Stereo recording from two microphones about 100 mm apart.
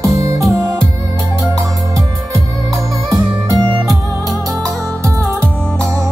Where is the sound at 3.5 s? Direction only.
40° right (ahead or behind).